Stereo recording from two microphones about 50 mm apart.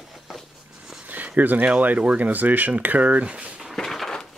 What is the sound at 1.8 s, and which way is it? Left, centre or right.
Speech, right.